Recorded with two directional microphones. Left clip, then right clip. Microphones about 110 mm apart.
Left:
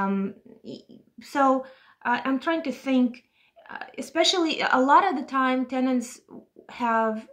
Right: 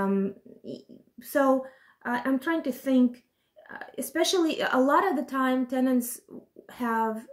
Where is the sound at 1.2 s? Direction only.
15° right (ahead or behind).